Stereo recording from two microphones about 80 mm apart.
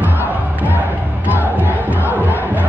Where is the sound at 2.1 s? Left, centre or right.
Right.